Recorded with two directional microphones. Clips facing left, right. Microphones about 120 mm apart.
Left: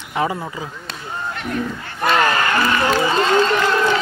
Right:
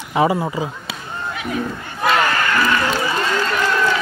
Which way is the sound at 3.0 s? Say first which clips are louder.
Left 4 dB; 20° left (ahead or behind).